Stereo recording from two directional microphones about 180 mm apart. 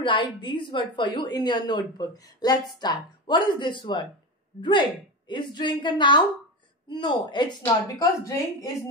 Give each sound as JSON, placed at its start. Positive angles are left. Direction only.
{"t": 0.0, "sound": "a woman's voice", "side_deg": 25}